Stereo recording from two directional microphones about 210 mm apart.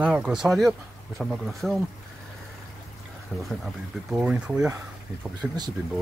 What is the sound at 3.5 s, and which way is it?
Speech, centre (ahead or behind).